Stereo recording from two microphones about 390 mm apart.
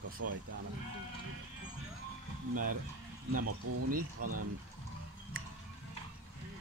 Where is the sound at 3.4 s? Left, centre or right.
Right.